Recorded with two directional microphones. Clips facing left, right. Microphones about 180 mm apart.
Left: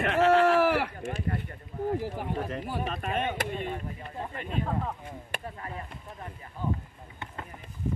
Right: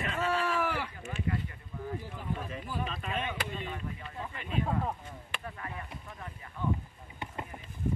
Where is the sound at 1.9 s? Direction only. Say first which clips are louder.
Left 7 dB; 75° left (ahead or behind).